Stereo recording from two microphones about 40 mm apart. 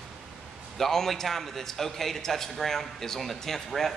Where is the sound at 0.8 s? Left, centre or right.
Centre.